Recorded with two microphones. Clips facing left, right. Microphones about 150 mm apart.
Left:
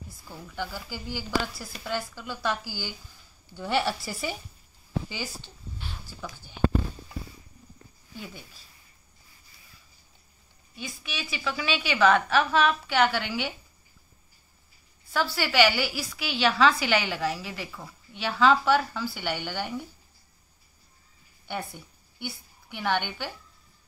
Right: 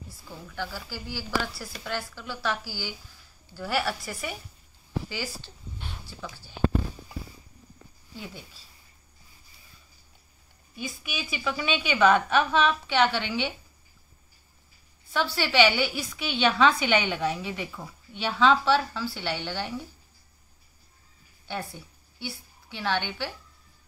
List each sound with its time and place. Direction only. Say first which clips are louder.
0.1 s speech: even; 15° left (ahead or behind)
5.1 s speech: right 1 dB; 15° left (ahead or behind)
10.8 s a woman's voice: right 2 dB; 5° right (ahead or behind)
15.1 s a woman's voice: even; 5° left (ahead or behind)
22.2 s a woman's voice: even; 15° left (ahead or behind)